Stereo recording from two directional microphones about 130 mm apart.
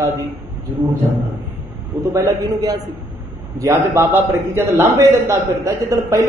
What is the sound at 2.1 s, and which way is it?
Speech, 25° right (ahead or behind).